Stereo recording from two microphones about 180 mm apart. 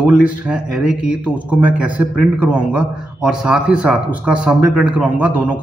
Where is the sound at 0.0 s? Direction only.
5° right (ahead or behind).